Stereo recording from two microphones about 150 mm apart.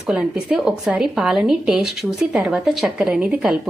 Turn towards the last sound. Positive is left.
turn(degrees=-5)  # may be behind; listen again after turning